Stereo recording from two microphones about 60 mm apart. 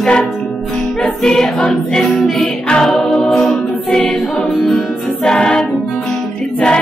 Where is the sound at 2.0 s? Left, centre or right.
Centre.